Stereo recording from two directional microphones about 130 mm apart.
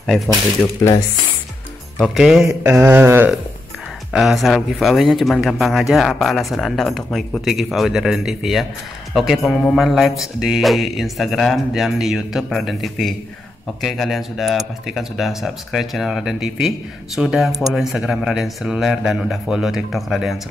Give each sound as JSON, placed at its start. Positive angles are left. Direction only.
{"t": 0.8, "sound": "speech", "side_deg": 30}
{"t": 2.0, "sound": "speech", "side_deg": 0}
{"t": 2.4, "sound": "a sound", "side_deg": -15}
{"t": 4.1, "sound": "speech", "side_deg": 0}